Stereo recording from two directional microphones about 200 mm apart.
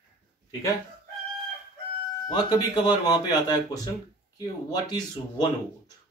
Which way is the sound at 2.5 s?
20° left (ahead or behind).